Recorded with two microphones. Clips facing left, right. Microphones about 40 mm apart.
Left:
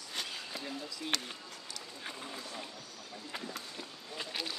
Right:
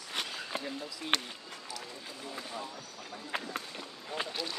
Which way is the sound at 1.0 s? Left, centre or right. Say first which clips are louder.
Right 4 dB; right.